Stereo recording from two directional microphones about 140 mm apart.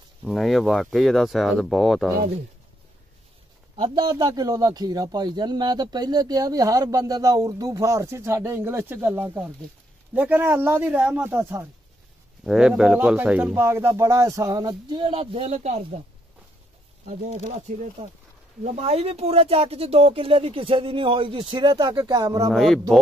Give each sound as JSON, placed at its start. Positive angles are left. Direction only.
{"t": 0.2, "sound": "speech", "side_deg": 0}
{"t": 3.7, "sound": "a man's voice", "side_deg": -35}
{"t": 12.4, "sound": "a man's voice", "side_deg": -5}
{"t": 18.0, "sound": "speech", "side_deg": -45}
{"t": 22.5, "sound": "speech", "side_deg": 0}